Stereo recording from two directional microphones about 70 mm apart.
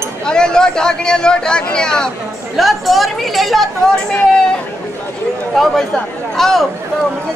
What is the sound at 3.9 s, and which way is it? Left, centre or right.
Speech, centre.